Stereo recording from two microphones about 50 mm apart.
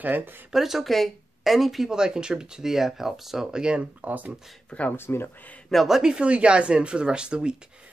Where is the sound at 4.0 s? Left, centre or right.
Right.